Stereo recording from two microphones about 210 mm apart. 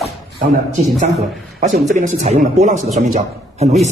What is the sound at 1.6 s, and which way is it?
Speech, 35° right (ahead or behind).